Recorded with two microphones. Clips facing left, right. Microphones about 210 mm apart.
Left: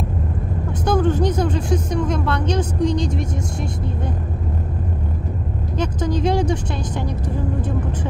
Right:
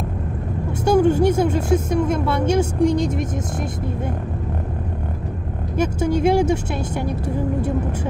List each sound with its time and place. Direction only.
0.8 s speech: 10° right (ahead or behind)
5.8 s speech: 10° right (ahead or behind)